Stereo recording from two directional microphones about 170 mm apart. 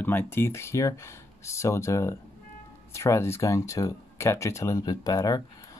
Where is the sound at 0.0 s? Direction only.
10° left (ahead or behind).